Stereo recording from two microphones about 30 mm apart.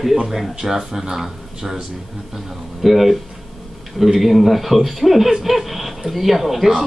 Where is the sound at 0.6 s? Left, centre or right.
Centre.